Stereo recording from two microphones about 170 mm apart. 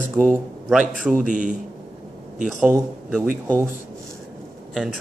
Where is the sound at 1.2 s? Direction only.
50° right (ahead or behind).